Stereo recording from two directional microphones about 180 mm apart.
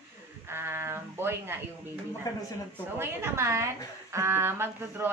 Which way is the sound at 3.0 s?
15° right (ahead or behind).